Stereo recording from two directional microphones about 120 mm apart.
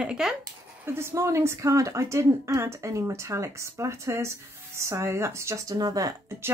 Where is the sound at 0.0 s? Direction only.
5° right (ahead or behind).